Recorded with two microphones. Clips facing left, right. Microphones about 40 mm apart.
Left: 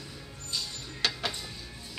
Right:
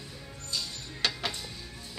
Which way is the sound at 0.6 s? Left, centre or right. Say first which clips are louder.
Even; centre.